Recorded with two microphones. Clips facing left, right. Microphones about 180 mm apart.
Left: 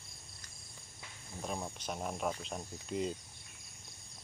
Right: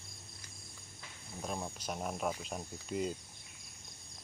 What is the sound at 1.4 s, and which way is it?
Speech, centre (ahead or behind).